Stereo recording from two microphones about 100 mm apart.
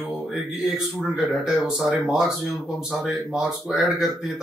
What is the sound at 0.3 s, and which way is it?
A man's voice, 5° right (ahead or behind).